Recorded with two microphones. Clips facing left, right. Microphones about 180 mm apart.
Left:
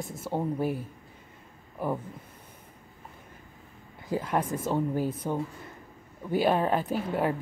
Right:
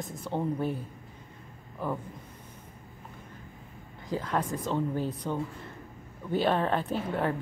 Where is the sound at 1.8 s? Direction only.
10° left (ahead or behind).